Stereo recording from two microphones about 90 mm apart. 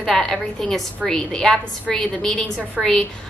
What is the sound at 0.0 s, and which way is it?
A woman's voice, 5° left (ahead or behind).